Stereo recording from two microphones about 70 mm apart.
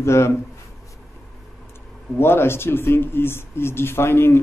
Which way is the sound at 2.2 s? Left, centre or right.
Left.